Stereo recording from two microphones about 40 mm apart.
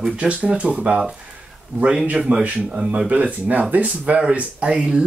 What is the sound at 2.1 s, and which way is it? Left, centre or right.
Speech, right.